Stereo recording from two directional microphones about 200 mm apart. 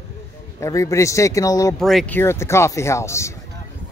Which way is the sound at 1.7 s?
Centre (ahead or behind).